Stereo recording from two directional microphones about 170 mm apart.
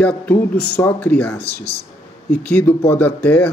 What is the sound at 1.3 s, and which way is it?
Speech, 65° left (ahead or behind).